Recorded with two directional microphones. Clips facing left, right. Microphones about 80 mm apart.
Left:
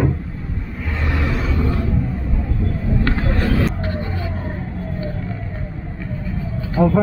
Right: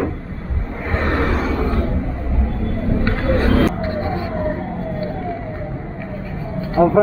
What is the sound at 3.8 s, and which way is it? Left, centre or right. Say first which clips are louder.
Emergency vehicle: right 4 dB; right.